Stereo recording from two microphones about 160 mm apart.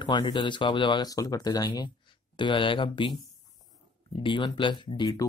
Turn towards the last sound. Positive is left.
turn(degrees=25)  # may be behind; listen again after turning